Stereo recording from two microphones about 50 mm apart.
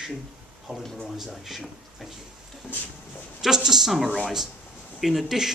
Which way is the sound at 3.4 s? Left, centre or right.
Centre.